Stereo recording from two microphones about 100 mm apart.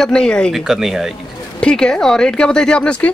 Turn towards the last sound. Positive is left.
turn(degrees=15)  # may be behind; listen again after turning